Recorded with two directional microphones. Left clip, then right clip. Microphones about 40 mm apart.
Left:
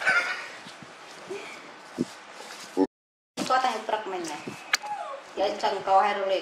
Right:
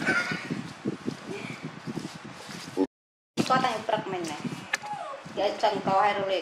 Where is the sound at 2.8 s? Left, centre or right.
Left.